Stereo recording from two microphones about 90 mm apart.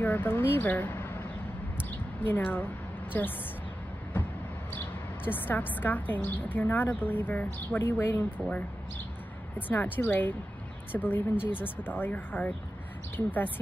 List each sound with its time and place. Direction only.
0.0 s a woman's voice: 20° left (ahead or behind)
1.8 s a sound: 20° left (ahead or behind)
4.7 s a woman's voice: 20° left (ahead or behind)
9.6 s a woman's voice: 20° left (ahead or behind)